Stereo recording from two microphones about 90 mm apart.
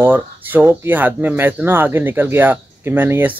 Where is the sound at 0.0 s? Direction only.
20° right (ahead or behind).